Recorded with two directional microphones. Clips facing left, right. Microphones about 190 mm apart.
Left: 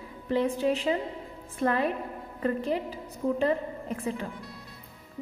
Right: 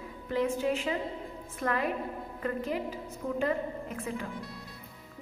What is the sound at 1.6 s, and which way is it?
Music, 30° left (ahead or behind).